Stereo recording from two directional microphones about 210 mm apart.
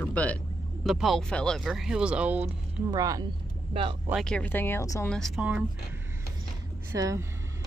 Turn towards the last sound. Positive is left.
turn(degrees=-15)  # may be behind; listen again after turning